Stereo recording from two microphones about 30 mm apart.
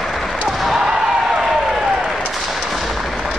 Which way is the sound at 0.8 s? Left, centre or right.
Centre.